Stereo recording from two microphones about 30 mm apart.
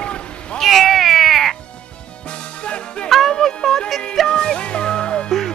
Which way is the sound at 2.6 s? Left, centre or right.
Left.